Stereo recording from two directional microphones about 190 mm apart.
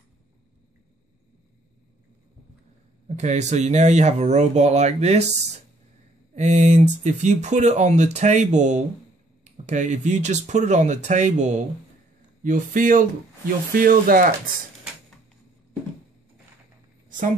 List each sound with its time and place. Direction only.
3.2 s speech: 35° right (ahead or behind)
6.3 s speech: 40° right (ahead or behind)